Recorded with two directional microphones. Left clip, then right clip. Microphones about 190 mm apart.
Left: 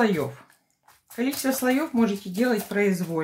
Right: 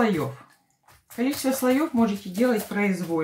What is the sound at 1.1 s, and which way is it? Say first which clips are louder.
Speech: right 1 dB; 45° left (ahead or behind).